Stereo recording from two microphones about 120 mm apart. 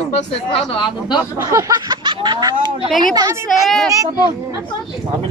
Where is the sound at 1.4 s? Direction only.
25° right (ahead or behind).